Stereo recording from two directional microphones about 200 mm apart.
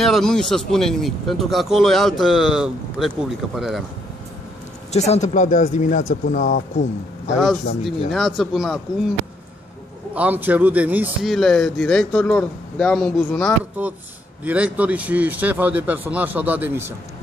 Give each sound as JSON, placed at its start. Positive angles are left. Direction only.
{"t": 0.0, "sound": "speech", "side_deg": 0}
{"t": 4.9, "sound": "speech", "side_deg": 35}
{"t": 8.4, "sound": "speech", "side_deg": 0}
{"t": 10.1, "sound": "a man's voice", "side_deg": -10}